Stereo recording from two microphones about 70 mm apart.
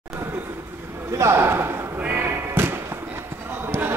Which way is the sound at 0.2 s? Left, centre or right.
Right.